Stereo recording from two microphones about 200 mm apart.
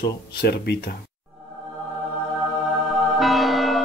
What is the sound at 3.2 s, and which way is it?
Church bell, centre (ahead or behind).